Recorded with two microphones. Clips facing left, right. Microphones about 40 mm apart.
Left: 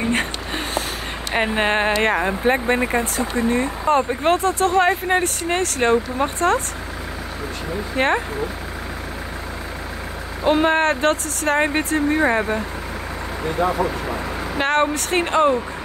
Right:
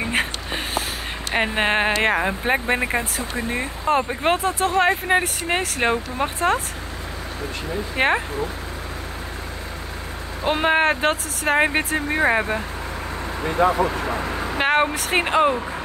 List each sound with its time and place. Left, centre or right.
0.0 s a sound: centre
1.3 s speech: centre
7.9 s speech: centre
10.4 s speech: centre
13.6 s speech: right
14.6 s speech: centre